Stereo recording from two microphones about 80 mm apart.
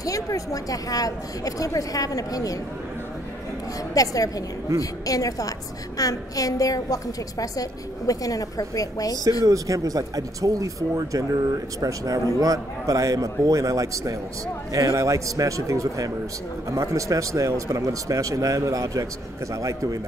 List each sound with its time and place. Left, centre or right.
0.0 s speech: left
3.9 s speech: left
9.5 s a man's voice: right